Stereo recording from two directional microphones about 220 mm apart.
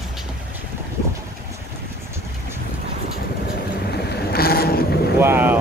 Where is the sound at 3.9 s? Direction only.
45° left (ahead or behind).